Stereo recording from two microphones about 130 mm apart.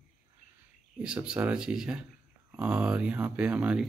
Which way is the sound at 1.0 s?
5° right (ahead or behind).